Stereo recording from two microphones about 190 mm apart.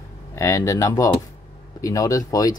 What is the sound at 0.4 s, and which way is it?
Speech, 15° left (ahead or behind).